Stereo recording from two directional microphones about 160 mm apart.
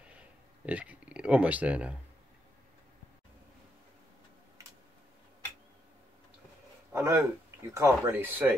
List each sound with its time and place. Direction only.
0.0 s speech: 10° right (ahead or behind)
6.9 s speech: 15° right (ahead or behind)